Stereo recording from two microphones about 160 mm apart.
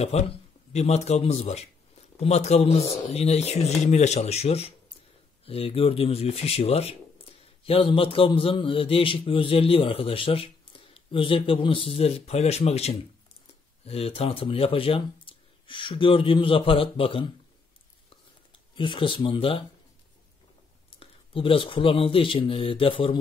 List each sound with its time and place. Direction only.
0.0 s speech: 40° left (ahead or behind)
18.8 s speech: 30° left (ahead or behind)
21.0 s speech: 35° left (ahead or behind)